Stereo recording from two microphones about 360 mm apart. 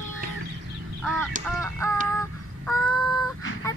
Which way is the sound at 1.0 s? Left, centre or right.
Centre.